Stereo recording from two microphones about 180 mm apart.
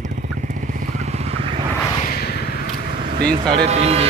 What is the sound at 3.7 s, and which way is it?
Speech, 35° right (ahead or behind).